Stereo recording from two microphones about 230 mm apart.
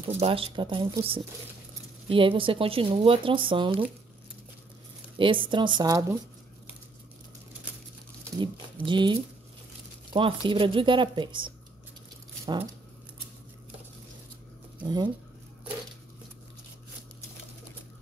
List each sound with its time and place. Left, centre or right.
0.2 s speech: right
5.1 s speech: right
8.4 s speech: right
14.8 s speech: centre